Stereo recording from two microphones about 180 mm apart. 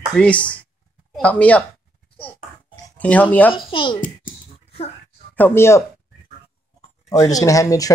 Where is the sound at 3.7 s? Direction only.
30° left (ahead or behind).